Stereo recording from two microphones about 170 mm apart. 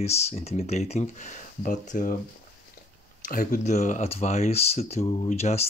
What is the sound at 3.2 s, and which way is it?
Speech, 55° left (ahead or behind).